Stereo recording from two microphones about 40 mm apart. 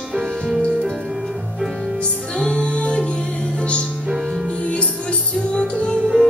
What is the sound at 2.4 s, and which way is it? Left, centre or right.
Music, left.